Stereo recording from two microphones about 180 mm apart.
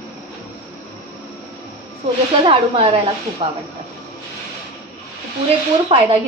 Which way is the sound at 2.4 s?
30° right (ahead or behind).